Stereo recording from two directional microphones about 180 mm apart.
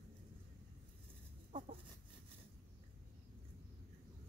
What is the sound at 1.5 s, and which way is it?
Chicken, 35° right (ahead or behind).